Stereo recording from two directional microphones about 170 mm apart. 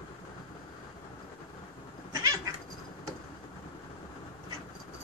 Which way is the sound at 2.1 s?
20° right (ahead or behind).